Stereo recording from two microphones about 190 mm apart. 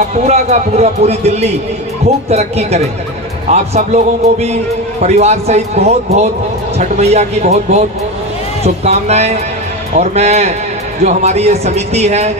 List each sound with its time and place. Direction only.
0.2 s a man's voice: 35° right (ahead or behind)